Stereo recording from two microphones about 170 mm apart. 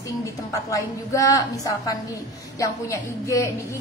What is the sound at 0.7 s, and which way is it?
Speech, 20° left (ahead or behind).